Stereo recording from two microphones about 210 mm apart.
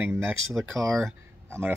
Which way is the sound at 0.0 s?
10° right (ahead or behind).